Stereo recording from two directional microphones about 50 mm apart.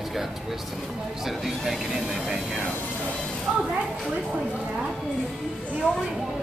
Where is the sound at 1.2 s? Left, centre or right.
Centre.